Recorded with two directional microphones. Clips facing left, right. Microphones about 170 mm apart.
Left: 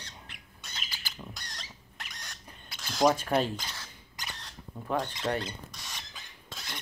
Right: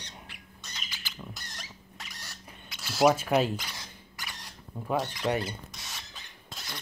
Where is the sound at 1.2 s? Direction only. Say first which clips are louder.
Right 2 dB; 5° right (ahead or behind).